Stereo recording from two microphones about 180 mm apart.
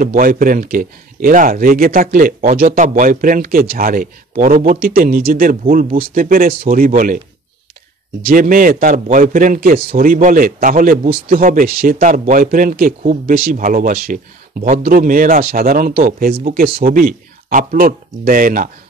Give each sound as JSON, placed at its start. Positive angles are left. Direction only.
{"t": 0.0, "sound": "a man's voice", "side_deg": -50}
{"t": 8.2, "sound": "a man's voice", "side_deg": -55}